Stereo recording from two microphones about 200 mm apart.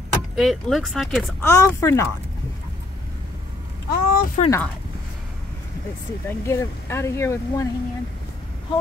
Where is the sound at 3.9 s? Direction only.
45° left (ahead or behind).